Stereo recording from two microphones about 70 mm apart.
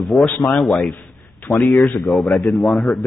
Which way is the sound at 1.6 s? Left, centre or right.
Centre.